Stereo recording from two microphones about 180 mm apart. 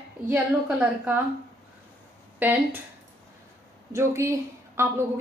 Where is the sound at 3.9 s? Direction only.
15° right (ahead or behind).